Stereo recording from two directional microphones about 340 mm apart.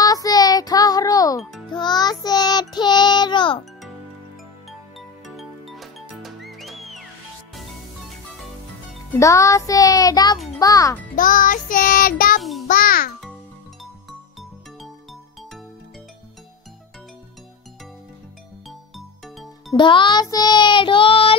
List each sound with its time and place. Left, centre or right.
0.0 s child singing: centre
5.2 s music: centre
9.2 s music: centre
11.1 s child singing: left
12.4 s a child's voice: centre
12.6 s a child's voice: left
19.7 s music: centre